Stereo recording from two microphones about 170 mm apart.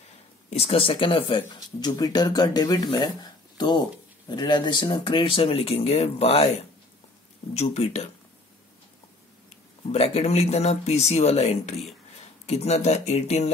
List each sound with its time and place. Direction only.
0.5 s speech: 35° left (ahead or behind)
7.5 s speech: 40° left (ahead or behind)
9.9 s speech: 40° left (ahead or behind)